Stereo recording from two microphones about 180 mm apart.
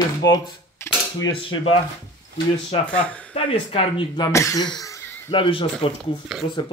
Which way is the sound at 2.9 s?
5° left (ahead or behind).